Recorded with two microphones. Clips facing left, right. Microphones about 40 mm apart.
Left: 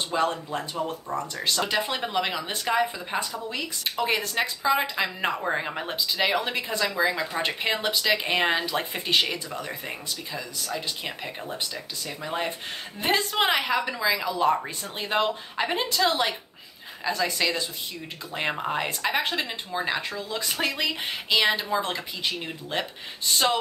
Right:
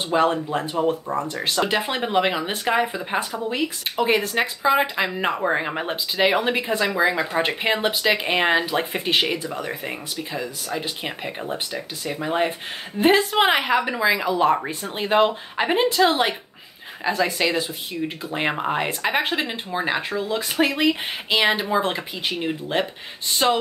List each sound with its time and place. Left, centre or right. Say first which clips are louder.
0.1 s speech: right 7 dB; right
1.2 s speech: right 3 dB; right